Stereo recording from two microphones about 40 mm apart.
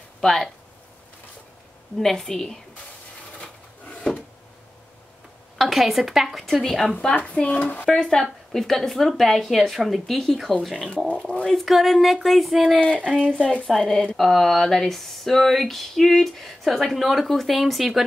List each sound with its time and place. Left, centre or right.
0.2 s speech: centre
2.0 s a woman's voice: centre
5.6 s speech: centre
6.4 s speech: centre
7.2 s stir: left
7.8 s a woman's voice: centre
11.1 s stir: left
11.4 s speech: centre
12.8 s speech: left
13.7 s speech: centre